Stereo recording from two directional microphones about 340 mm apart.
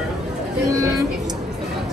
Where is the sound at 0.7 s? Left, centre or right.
Centre.